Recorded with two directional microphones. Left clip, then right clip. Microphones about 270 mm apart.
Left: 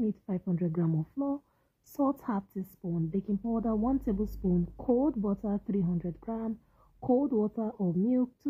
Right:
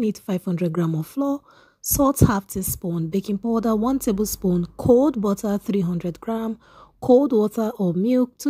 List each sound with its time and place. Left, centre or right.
0.0 s a woman's voice: right
4.4 s a woman's voice: right
5.0 s a woman's voice: right